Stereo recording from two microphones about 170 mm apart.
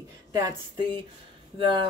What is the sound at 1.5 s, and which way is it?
Speech, 30° right (ahead or behind).